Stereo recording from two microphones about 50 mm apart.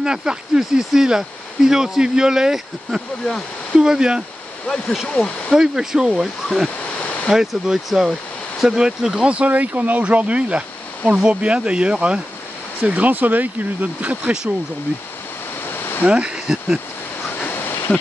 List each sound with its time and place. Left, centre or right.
0.0 s speech: centre
5.5 s speech: centre
8.6 s speech: centre
9.3 s speech: right
14.2 s speech: centre
15.6 s a sound: left
16.0 s speech: right
17.5 s a sound: left